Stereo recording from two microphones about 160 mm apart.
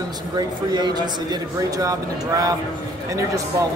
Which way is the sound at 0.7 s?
25° right (ahead or behind).